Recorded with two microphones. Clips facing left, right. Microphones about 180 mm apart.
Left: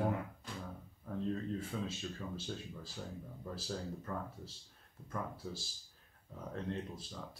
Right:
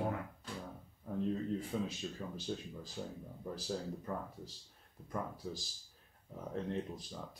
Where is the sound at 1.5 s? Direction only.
15° right (ahead or behind).